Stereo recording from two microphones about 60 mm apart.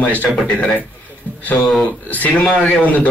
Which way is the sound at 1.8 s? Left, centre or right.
Left.